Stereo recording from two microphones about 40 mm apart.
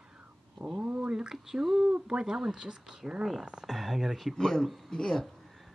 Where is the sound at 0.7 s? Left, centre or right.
Right.